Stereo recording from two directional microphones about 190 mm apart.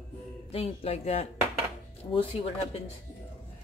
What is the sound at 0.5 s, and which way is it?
A woman's voice, 30° left (ahead or behind).